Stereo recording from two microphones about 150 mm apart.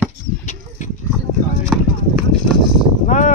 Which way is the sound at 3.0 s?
60° left (ahead or behind).